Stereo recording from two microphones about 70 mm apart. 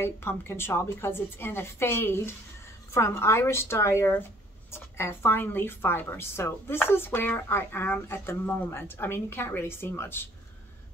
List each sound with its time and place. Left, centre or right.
0.0 s speech: left